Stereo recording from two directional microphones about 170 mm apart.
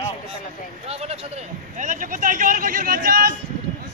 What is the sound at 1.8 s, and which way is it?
Speech, 50° right (ahead or behind).